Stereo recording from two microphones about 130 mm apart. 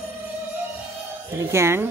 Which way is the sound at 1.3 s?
20° right (ahead or behind).